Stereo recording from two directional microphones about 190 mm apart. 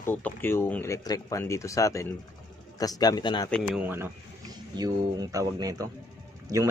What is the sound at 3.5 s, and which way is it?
Speech, centre (ahead or behind).